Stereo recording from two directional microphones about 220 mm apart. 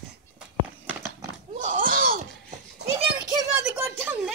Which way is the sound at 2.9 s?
15° right (ahead or behind).